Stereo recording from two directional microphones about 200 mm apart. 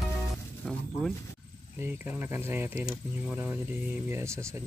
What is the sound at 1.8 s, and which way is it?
Speech, 10° right (ahead or behind).